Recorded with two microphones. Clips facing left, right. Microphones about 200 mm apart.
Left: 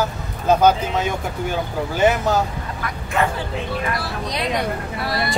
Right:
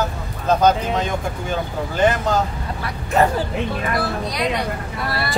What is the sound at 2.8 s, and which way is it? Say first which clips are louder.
Speech: right 4 dB; 40° right (ahead or behind).